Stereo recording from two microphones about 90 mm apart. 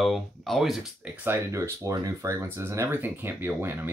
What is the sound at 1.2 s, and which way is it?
Speech, 30° right (ahead or behind).